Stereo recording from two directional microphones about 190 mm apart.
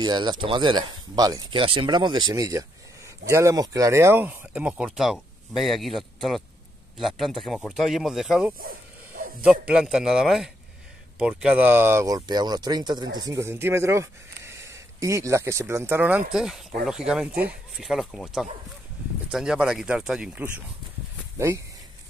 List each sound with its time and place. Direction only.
0.0 s speech: 20° right (ahead or behind)